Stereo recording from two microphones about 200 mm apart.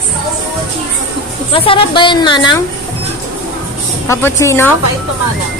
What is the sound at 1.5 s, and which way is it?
A woman's voice, 25° left (ahead or behind).